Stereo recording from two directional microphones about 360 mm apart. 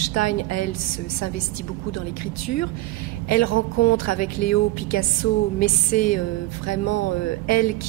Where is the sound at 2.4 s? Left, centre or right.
Left.